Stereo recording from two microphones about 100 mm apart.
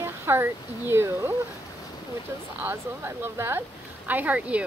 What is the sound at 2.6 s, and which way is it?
Speech, 20° right (ahead or behind).